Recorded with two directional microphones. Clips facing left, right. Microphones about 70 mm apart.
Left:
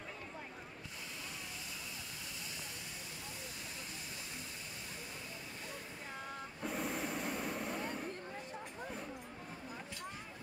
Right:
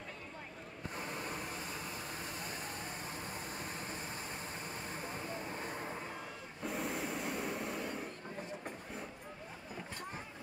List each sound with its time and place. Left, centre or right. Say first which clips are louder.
5.3 s vehicle: right 6 dB; right
6.6 s vehicle: right 1 dB; centre